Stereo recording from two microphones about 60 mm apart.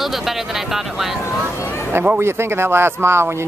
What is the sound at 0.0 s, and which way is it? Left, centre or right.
Speech, centre.